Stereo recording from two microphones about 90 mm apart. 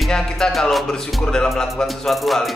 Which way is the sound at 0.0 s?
5° left (ahead or behind).